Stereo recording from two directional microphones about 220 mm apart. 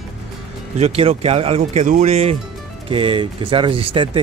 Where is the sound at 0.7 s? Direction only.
30° right (ahead or behind).